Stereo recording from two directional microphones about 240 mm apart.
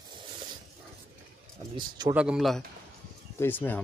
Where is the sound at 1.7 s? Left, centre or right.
Centre.